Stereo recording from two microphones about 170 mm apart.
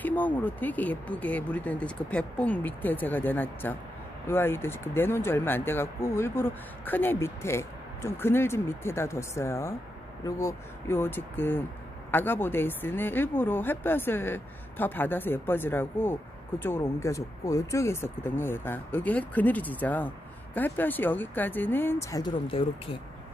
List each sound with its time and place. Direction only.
0.0 s speech: 10° left (ahead or behind)
22.5 s speech: 30° left (ahead or behind)